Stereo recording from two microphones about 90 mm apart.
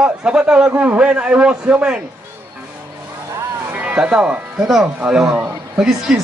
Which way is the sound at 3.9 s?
15° right (ahead or behind).